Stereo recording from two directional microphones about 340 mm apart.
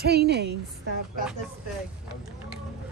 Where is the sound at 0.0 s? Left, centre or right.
Right.